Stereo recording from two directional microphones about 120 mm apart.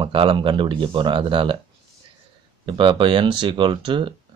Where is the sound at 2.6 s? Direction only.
45° right (ahead or behind).